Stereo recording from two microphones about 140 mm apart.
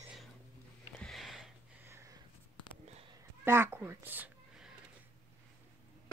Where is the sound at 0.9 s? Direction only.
Centre (ahead or behind).